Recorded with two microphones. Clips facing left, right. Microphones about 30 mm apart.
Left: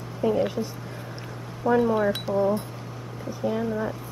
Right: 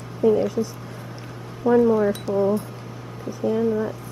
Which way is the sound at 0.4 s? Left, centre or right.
Left.